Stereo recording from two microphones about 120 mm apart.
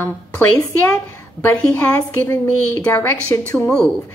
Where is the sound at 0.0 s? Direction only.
20° left (ahead or behind).